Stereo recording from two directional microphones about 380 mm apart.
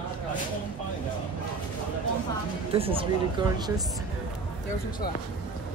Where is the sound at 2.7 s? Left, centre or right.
Centre.